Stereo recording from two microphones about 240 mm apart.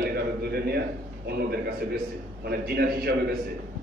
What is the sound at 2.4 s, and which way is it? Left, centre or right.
Speech, right.